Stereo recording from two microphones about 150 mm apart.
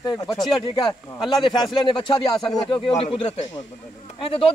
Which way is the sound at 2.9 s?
45° left (ahead or behind).